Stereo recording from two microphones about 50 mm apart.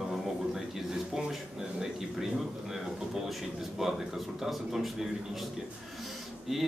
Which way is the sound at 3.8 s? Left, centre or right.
Centre.